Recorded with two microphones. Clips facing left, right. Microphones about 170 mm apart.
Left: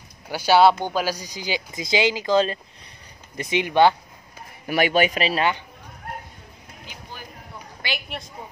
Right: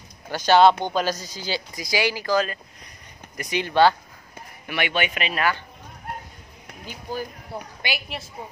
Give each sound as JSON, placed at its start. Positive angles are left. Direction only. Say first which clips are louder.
{"t": 0.3, "sound": "speech", "louder": "even", "side_deg": 10}
{"t": 4.6, "sound": "a man's voice", "louder": "left 6 dB", "side_deg": 40}
{"t": 6.9, "sound": "speech", "louder": "right 11 dB", "side_deg": -40}
{"t": 7.5, "sound": "a woman's voice", "louder": "right 9 dB", "side_deg": -30}
{"t": 8.1, "sound": "a woman's voice", "louder": "even", "side_deg": 0}